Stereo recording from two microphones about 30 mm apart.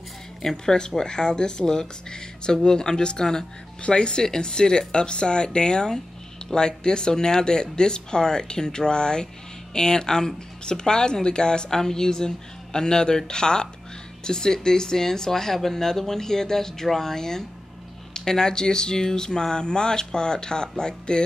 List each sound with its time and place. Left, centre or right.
0.4 s speech: centre
3.8 s speech: left